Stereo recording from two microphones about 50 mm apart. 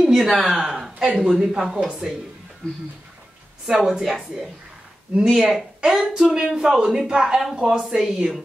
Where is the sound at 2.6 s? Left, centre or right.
Centre.